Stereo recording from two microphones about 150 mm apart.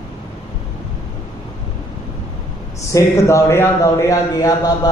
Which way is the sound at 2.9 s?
20° left (ahead or behind).